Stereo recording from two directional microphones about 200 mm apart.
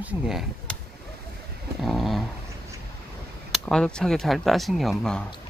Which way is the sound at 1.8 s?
Centre (ahead or behind).